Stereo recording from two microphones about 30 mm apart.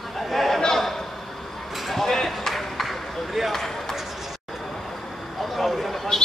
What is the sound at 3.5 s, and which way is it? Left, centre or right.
Basketball bounce, centre.